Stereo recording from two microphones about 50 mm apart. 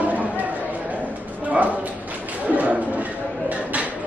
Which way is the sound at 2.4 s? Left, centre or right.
Right.